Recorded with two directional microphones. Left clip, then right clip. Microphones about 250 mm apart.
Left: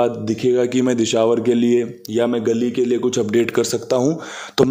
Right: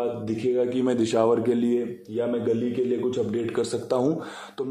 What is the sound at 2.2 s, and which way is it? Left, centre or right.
A man's voice, left.